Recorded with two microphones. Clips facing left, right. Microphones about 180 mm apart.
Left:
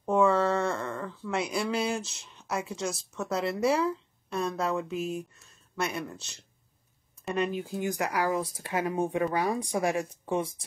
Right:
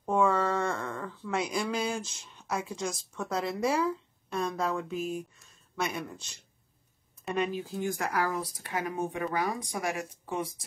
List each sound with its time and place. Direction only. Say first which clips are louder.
0.0 s speech: left 3 dB; 5° left (ahead or behind)
7.2 s speech: left 1 dB; centre (ahead or behind)
7.8 s speech: left 1 dB; 15° left (ahead or behind)
8.5 s speech: left 4 dB; 25° left (ahead or behind)